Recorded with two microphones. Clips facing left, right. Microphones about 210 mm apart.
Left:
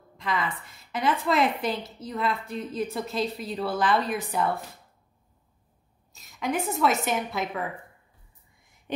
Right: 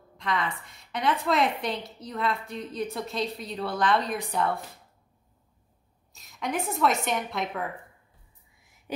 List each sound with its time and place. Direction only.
0.2 s a woman's voice: centre (ahead or behind)
6.1 s a woman's voice: centre (ahead or behind)